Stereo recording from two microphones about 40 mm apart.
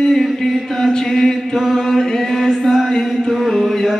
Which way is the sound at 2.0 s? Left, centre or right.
Centre.